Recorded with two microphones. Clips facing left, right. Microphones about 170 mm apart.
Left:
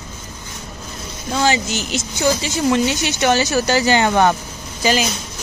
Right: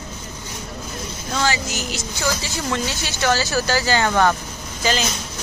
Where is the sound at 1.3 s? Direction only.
20° left (ahead or behind).